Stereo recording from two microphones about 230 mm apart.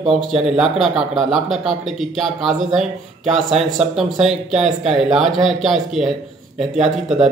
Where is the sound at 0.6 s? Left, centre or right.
Centre.